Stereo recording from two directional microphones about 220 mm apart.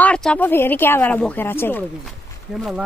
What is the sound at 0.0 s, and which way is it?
Speech, 5° left (ahead or behind).